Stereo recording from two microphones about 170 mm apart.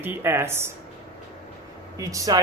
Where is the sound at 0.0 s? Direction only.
15° right (ahead or behind).